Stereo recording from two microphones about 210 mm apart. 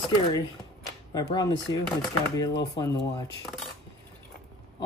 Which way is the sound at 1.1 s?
20° left (ahead or behind).